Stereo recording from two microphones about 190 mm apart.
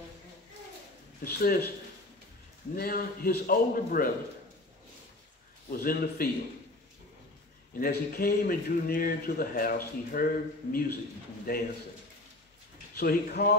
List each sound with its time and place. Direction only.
1.2 s a man's voice: 50° left (ahead or behind)
2.7 s a man's voice: 50° left (ahead or behind)
5.7 s a man's voice: 50° left (ahead or behind)
7.8 s a man's voice: 50° left (ahead or behind)
12.9 s a man's voice: 55° left (ahead or behind)